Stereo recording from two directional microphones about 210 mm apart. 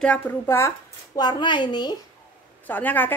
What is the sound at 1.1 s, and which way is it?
Speech, 20° left (ahead or behind).